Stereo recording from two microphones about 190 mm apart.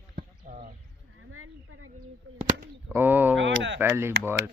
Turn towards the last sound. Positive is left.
turn(degrees=-15)  # may be behind; listen again after turning